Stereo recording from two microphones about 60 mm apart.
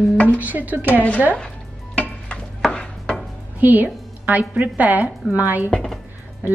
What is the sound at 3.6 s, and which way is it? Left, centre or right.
Speech, right.